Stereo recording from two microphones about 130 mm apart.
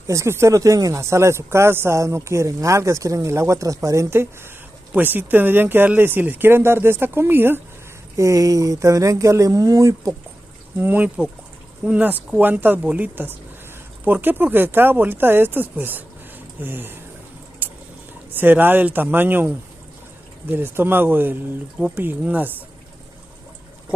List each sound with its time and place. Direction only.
0.0 s speech: 20° right (ahead or behind)
10.8 s speech: 15° right (ahead or behind)
18.3 s speech: 15° right (ahead or behind)